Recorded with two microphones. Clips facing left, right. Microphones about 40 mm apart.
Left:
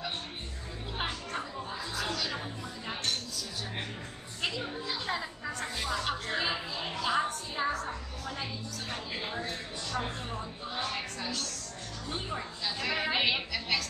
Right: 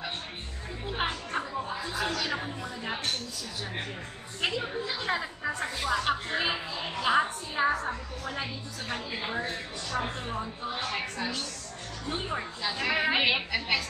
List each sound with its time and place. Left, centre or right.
0.9 s music: right
4.4 s a woman's voice: centre